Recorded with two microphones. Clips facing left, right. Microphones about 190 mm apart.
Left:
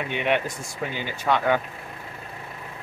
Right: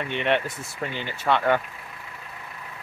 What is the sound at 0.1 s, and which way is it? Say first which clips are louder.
Speech: even; 5° left (ahead or behind).